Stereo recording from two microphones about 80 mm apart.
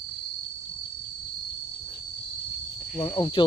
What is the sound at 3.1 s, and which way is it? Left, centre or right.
Speech, left.